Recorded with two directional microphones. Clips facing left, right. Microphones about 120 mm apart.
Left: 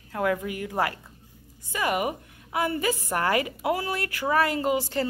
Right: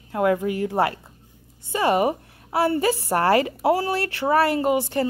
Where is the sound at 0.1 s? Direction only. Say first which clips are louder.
Right 6 dB; 25° right (ahead or behind).